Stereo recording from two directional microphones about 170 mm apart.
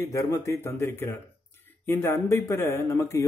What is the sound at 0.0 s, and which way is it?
Speech, 20° left (ahead or behind).